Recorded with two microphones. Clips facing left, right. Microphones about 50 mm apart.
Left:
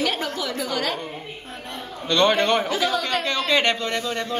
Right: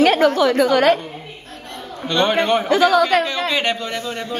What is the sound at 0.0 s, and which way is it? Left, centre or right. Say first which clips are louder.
Speech: right 12 dB; right.